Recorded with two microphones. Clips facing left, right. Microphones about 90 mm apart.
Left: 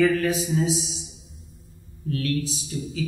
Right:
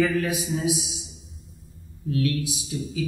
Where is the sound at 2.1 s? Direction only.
15° right (ahead or behind).